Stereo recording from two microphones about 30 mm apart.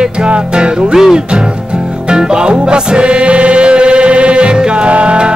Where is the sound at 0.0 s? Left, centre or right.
Right.